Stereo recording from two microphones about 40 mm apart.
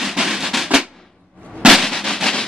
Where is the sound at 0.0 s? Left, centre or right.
Centre.